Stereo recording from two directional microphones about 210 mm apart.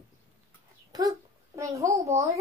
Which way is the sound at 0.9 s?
15° right (ahead or behind).